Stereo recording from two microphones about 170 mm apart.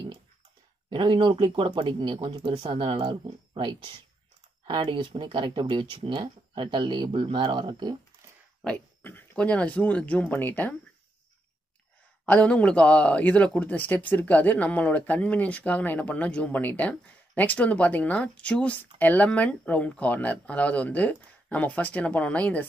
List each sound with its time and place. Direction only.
0.8 s speech: 25° right (ahead or behind)
8.6 s speech: 10° left (ahead or behind)
12.3 s speech: 10° left (ahead or behind)